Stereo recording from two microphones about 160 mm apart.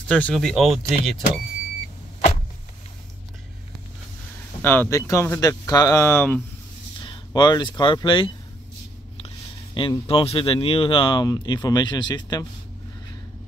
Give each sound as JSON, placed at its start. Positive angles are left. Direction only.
{"t": 0.1, "sound": "speech", "side_deg": 5}
{"t": 4.6, "sound": "speech", "side_deg": 15}
{"t": 7.0, "sound": "speech", "side_deg": 30}
{"t": 9.8, "sound": "speech", "side_deg": 30}